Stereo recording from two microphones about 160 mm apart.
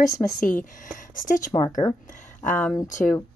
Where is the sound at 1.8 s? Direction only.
20° left (ahead or behind).